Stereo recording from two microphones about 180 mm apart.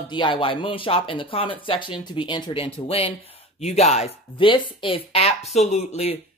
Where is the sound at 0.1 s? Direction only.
25° left (ahead or behind).